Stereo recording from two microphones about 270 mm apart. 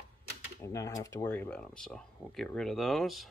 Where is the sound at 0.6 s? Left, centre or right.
Centre.